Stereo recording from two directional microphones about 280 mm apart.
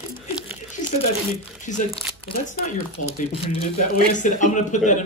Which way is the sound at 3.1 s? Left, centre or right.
Centre.